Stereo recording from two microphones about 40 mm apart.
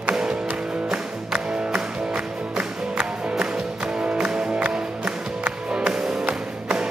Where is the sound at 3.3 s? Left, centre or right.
Right.